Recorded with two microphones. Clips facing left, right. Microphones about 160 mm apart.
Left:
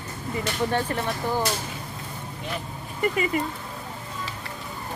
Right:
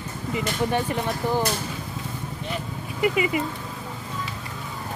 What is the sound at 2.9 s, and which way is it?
Speech, 10° right (ahead or behind).